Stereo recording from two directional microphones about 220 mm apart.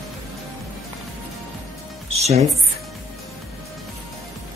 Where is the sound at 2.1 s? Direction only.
30° right (ahead or behind).